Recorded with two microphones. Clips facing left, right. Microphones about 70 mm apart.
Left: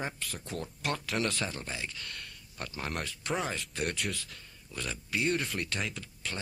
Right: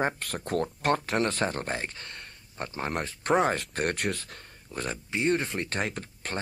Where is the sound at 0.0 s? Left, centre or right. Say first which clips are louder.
Right 9 dB; right.